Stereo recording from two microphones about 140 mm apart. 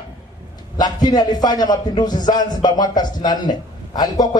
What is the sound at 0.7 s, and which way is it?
A man's voice, 30° left (ahead or behind).